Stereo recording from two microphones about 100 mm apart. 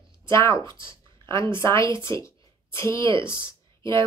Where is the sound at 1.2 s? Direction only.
25° left (ahead or behind).